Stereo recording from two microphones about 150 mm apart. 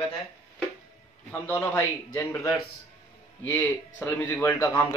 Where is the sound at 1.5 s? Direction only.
20° left (ahead or behind).